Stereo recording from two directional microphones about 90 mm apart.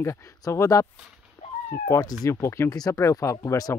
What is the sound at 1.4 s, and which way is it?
Cat, 40° left (ahead or behind).